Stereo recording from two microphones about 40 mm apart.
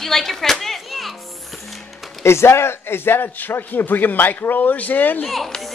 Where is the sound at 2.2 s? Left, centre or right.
Left.